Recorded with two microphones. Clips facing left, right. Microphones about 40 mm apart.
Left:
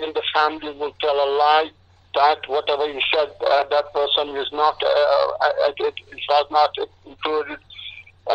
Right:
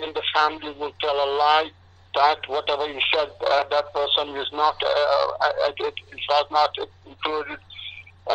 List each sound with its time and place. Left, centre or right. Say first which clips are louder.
0.0 s speech: left 2 dB; centre